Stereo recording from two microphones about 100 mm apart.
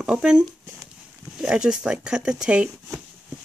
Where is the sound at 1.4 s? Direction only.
5° right (ahead or behind).